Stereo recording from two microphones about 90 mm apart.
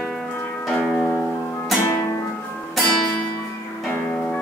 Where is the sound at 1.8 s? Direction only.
30° left (ahead or behind).